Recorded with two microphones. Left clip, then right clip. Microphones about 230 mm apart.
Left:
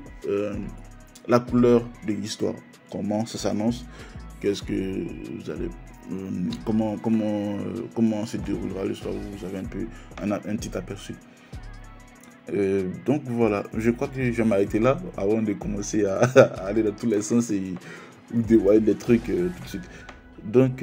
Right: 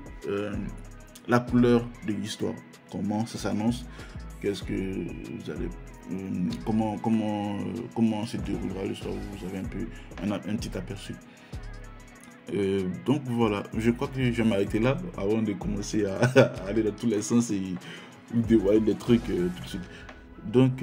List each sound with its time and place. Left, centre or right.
0.2 s speech: centre
4.4 s speech: centre
12.4 s speech: centre